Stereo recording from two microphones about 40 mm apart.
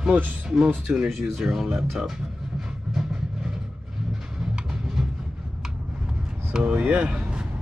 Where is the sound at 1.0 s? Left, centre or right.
Centre.